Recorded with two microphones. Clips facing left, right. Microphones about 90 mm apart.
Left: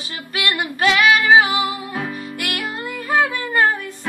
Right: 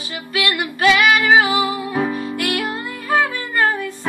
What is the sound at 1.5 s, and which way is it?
Music, 30° right (ahead or behind).